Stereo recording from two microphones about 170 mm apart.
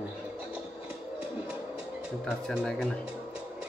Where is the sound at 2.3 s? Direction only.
5° left (ahead or behind).